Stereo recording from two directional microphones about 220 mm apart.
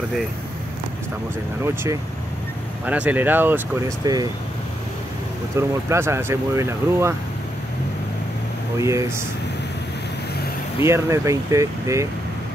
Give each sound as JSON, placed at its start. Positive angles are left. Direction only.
{"t": 1.6, "sound": "speech", "side_deg": -10}
{"t": 5.6, "sound": "speech", "side_deg": -10}
{"t": 8.7, "sound": "speech", "side_deg": -15}
{"t": 10.9, "sound": "speech", "side_deg": -15}